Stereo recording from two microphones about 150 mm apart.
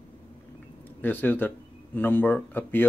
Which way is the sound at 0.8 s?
15° left (ahead or behind).